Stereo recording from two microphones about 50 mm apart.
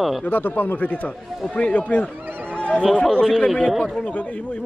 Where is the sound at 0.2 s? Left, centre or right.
Left.